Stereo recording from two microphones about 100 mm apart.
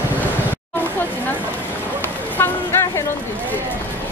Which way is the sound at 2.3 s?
20° left (ahead or behind).